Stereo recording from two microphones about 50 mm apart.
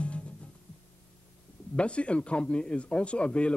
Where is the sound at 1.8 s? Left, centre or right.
Left.